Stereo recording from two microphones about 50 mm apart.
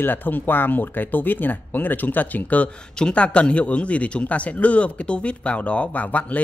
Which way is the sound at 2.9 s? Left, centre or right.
Left.